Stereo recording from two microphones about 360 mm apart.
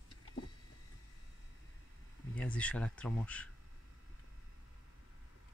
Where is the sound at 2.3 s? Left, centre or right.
Centre.